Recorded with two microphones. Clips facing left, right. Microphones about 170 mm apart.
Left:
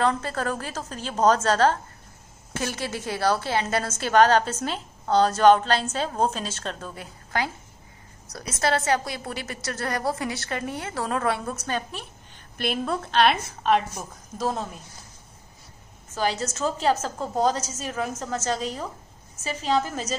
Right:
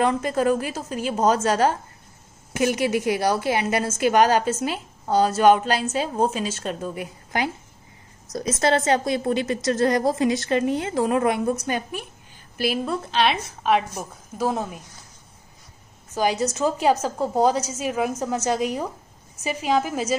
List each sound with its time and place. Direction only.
0.0 s a woman's voice: 15° right (ahead or behind)
8.5 s a woman's voice: 20° right (ahead or behind)
12.5 s a woman's voice: 5° right (ahead or behind)
16.2 s a woman's voice: 15° right (ahead or behind)